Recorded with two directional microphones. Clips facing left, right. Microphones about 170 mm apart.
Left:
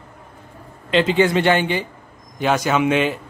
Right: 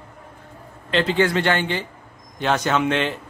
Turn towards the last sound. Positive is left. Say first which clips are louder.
# left 3 dB
turn(degrees=10)  # may be behind; listen again after turning